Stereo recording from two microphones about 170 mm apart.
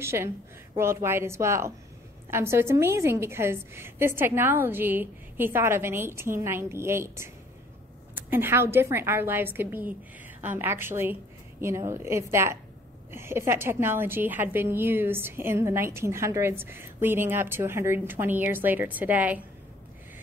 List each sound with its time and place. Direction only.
0.0 s a woman's voice: 15° right (ahead or behind)